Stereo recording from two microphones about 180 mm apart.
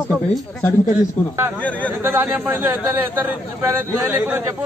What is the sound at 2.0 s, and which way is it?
A man's voice, 10° right (ahead or behind).